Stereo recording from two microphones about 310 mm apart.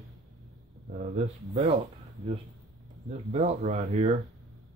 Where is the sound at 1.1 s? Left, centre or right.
Centre.